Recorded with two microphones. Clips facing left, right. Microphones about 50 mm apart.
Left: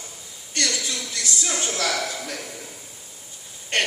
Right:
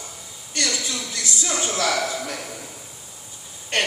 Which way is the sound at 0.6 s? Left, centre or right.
Right.